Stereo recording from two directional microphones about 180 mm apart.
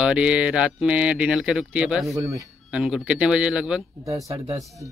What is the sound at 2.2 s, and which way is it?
Speech, 15° right (ahead or behind).